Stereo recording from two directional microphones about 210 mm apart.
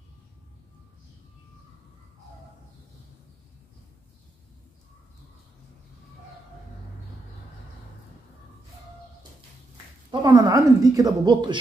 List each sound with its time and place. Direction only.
10.2 s speech: 15° right (ahead or behind)